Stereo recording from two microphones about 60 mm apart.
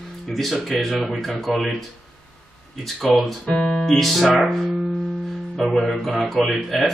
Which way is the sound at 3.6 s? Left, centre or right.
Centre.